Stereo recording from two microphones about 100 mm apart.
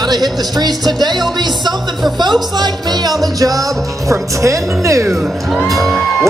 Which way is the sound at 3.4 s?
35° right (ahead or behind).